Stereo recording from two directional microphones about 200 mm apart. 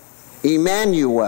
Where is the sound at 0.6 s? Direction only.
15° left (ahead or behind).